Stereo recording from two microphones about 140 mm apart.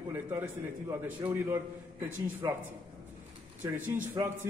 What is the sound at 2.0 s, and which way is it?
Speech, 15° right (ahead or behind).